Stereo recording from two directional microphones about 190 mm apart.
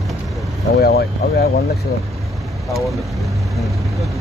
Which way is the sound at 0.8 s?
55° left (ahead or behind).